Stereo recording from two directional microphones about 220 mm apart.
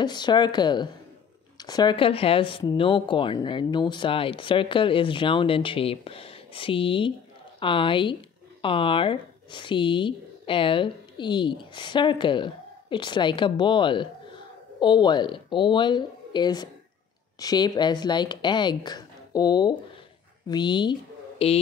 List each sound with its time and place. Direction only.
0.0 s speech: 20° left (ahead or behind)